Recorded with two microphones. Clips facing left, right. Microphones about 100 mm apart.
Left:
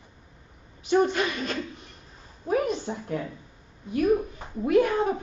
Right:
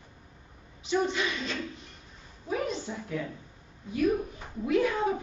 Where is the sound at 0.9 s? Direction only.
50° left (ahead or behind).